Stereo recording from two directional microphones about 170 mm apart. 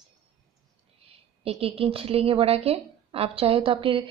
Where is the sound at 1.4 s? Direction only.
35° right (ahead or behind).